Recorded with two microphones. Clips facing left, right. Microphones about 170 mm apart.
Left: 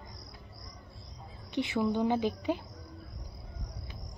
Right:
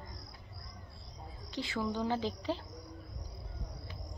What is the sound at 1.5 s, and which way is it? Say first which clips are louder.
A woman's voice: left 6 dB; 20° left (ahead or behind).